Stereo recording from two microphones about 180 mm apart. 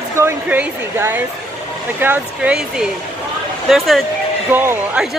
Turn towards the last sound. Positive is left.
turn(degrees=-10)  # may be behind; listen again after turning